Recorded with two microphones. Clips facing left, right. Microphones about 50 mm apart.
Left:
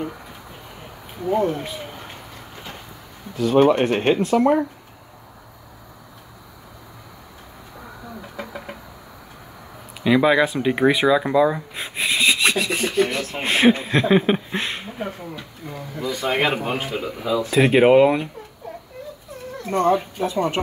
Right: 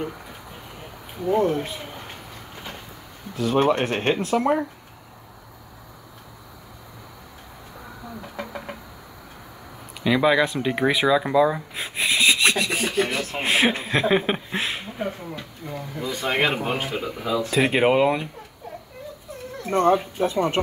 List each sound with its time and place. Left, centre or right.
2.5 s vehicle: centre
3.3 s speech: centre
8.2 s vehicle: centre
10.0 s speech: centre
19.9 s speech: centre
20.6 s speech: left